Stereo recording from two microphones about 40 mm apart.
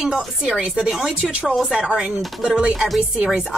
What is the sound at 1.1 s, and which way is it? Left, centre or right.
Speech, right.